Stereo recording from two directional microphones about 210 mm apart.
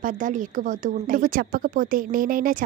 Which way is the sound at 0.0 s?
40° right (ahead or behind).